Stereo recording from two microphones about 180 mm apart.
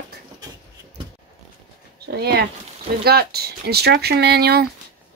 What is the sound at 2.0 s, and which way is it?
Speech, 60° right (ahead or behind).